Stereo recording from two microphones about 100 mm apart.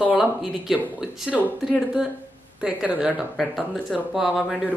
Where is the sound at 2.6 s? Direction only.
10° right (ahead or behind).